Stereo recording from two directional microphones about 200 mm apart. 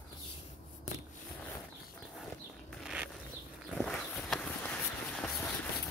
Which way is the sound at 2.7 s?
5° right (ahead or behind).